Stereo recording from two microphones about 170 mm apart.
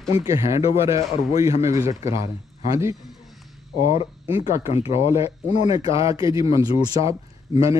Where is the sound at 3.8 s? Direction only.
35° left (ahead or behind).